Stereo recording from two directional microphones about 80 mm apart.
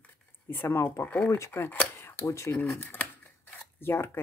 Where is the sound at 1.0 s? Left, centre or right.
Left.